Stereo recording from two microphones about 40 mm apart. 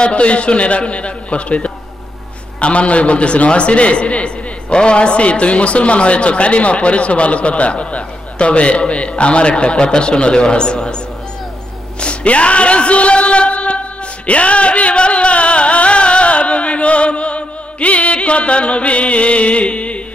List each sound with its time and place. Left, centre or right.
0.0 s a man's voice: left
12.0 s speech: left